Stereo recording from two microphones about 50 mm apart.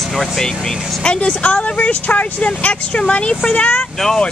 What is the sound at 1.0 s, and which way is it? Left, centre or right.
Speech, left.